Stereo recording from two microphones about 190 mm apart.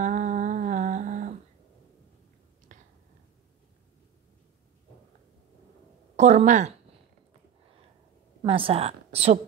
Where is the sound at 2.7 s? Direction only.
40° right (ahead or behind).